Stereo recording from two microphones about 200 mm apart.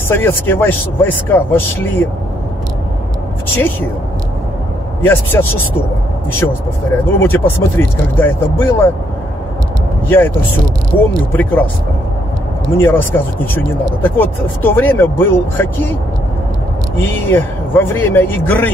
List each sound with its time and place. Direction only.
0.1 s speech: 10° left (ahead or behind)
5.0 s speech: 10° left (ahead or behind)
10.0 s speech: 10° left (ahead or behind)
10.9 s speech: 25° left (ahead or behind)
11.3 s speech: 10° left (ahead or behind)
12.7 s speech: 10° left (ahead or behind)
17.0 s speech: 10° left (ahead or behind)